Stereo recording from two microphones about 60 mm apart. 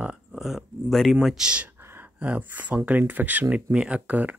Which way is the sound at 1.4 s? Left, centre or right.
Centre.